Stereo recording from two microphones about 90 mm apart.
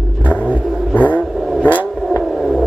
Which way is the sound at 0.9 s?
15° left (ahead or behind).